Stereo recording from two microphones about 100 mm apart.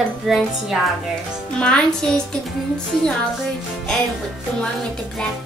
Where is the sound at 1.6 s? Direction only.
5° left (ahead or behind).